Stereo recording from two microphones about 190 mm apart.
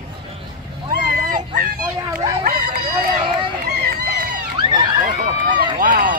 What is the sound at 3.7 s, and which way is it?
Run, 55° right (ahead or behind).